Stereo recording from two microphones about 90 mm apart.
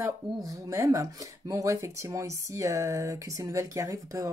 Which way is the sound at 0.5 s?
35° right (ahead or behind).